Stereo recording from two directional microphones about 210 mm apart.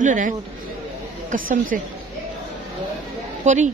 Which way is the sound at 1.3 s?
40° right (ahead or behind).